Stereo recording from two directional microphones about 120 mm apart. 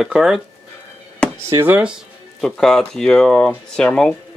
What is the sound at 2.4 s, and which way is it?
Speech, 5° left (ahead or behind).